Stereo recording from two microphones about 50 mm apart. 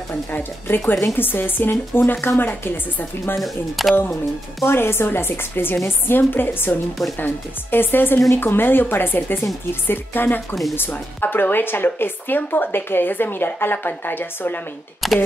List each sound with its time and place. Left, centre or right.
0.3 s speech: left
3.3 s speech: centre
4.6 s speech: left
15.0 s speech: centre